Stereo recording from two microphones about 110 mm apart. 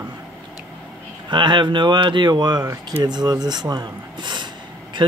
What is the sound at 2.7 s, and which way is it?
Speech, 25° right (ahead or behind).